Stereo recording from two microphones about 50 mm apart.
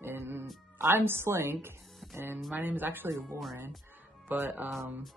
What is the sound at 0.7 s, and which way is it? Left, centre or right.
Speech, right.